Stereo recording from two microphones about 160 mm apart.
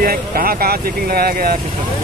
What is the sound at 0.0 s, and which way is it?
Speech, 65° right (ahead or behind).